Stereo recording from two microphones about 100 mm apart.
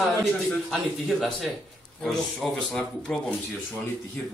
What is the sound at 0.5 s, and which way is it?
Speech, centre (ahead or behind).